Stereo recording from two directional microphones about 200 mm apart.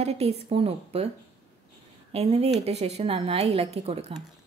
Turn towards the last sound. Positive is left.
turn(degrees=-30)  # may be behind; listen again after turning